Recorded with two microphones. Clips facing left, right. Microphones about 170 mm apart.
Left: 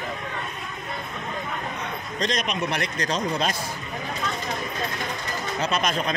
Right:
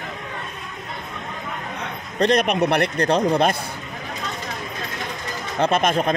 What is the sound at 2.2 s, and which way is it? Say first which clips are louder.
A man's voice: right 9 dB; 60° right (ahead or behind).